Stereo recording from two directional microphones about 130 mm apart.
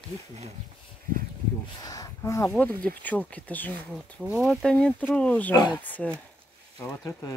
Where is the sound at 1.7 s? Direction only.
30° left (ahead or behind).